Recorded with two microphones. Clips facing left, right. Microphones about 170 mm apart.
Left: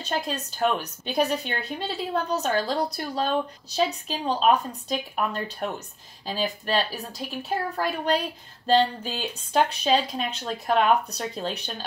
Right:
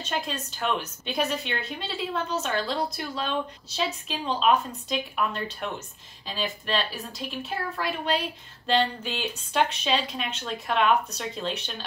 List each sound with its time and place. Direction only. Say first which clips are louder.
0.0 s a woman's voice: left 2 dB; 40° left (ahead or behind)